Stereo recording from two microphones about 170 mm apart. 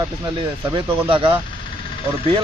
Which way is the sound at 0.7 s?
30° right (ahead or behind).